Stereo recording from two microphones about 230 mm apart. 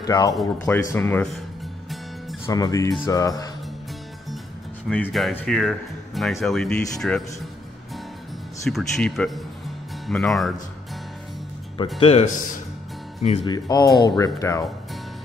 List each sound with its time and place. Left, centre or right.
0.0 s speech: centre
2.4 s speech: centre
4.8 s speech: centre
8.6 s speech: centre
12.0 s speech: left